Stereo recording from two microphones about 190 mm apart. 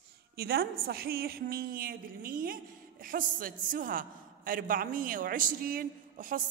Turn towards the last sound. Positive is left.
turn(degrees=-45)  # may be behind; listen again after turning